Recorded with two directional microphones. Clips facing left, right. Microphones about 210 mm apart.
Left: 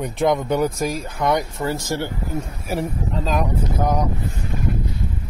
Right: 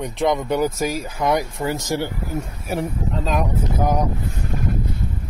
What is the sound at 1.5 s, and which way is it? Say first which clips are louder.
Speech: right 1 dB; 15° right (ahead or behind).